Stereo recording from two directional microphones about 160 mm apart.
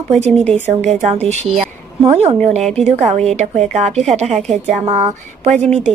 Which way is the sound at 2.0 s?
45° right (ahead or behind).